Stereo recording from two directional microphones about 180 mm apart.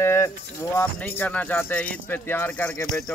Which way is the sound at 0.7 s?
10° left (ahead or behind).